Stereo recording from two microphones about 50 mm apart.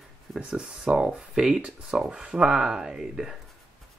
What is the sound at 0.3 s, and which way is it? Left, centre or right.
Speech, centre.